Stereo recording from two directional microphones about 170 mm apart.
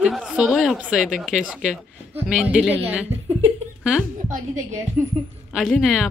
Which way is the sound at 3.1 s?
40° right (ahead or behind).